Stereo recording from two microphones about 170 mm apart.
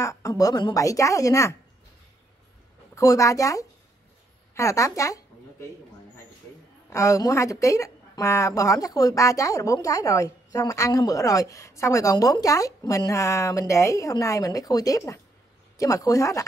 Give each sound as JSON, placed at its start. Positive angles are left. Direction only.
{"t": 0.0, "sound": "speech", "side_deg": 20}
{"t": 2.9, "sound": "speech", "side_deg": 20}
{"t": 6.9, "sound": "speech", "side_deg": 15}